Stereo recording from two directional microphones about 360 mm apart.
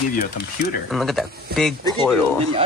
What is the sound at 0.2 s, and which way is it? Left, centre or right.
Speech, left.